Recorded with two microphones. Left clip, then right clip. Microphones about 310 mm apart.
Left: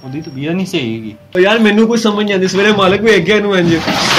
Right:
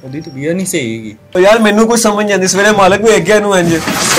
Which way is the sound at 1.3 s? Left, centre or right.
Right.